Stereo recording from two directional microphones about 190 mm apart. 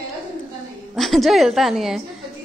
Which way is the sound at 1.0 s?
Centre (ahead or behind).